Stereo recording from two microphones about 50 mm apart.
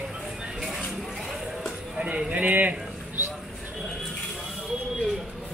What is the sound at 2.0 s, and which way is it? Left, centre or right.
Speech, right.